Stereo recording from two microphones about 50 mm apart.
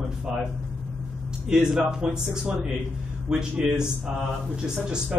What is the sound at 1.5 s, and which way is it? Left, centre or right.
Speech, centre.